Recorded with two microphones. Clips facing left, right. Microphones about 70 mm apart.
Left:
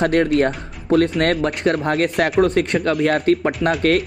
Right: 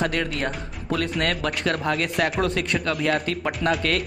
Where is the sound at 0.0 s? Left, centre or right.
Left.